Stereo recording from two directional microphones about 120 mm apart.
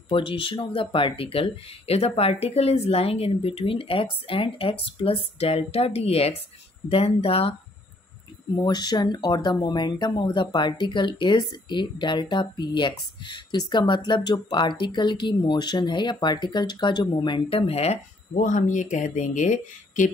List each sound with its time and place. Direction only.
0.1 s speech: 45° left (ahead or behind)
8.5 s speech: 35° left (ahead or behind)
17.5 s speech: 55° left (ahead or behind); by 20.1 s 90° left